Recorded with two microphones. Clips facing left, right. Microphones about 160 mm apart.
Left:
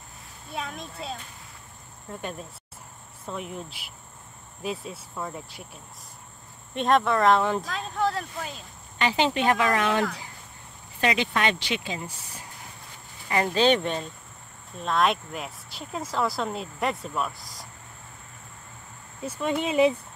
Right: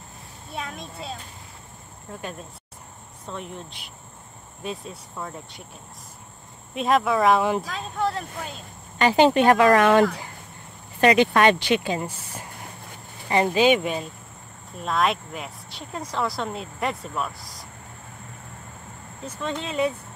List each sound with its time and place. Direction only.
0.5 s speech: centre (ahead or behind)
3.3 s speech: 5° left (ahead or behind)
6.7 s speech: 5° right (ahead or behind)
8.9 s a woman's voice: 50° right (ahead or behind)
13.5 s speech: 10° right (ahead or behind)
19.2 s speech: 10° left (ahead or behind)